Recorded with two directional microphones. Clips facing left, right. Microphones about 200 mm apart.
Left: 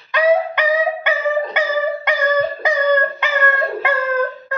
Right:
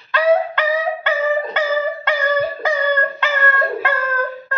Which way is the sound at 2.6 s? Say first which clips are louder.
Left 3 dB; 15° left (ahead or behind).